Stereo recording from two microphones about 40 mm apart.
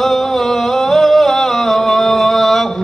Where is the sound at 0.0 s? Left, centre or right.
Centre.